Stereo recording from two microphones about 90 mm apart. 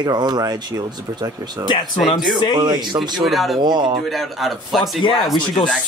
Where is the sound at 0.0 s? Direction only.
55° right (ahead or behind).